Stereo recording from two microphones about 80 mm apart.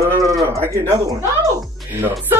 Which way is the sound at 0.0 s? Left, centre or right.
Right.